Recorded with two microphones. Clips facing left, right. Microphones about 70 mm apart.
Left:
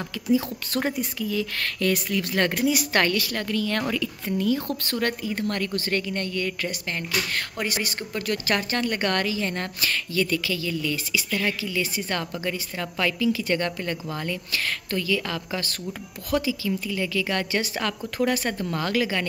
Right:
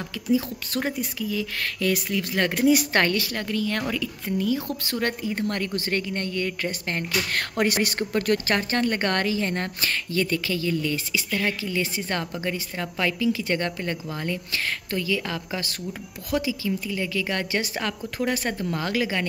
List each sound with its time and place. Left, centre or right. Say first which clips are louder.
0.3 s speech: left 1 dB; centre
2.6 s a woman's voice: right 6 dB; right; by 5.1 s centre
5.2 s a woman's voice: even; right
7.3 s speech: right 5 dB; right
8.5 s a woman's voice: right 1 dB; right